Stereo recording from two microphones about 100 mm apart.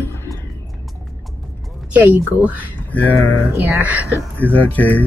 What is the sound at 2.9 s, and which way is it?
Speech, 15° left (ahead or behind).